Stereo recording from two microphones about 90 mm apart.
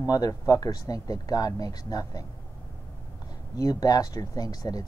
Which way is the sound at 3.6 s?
40° left (ahead or behind).